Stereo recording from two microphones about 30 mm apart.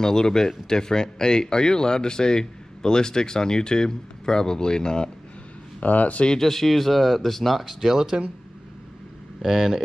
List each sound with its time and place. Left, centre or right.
0.0 s speech: centre
5.8 s speech: left
6.3 s speech: centre
7.6 s speech: centre
9.4 s speech: centre